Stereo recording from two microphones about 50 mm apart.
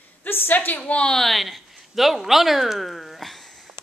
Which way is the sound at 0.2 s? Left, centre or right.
Left.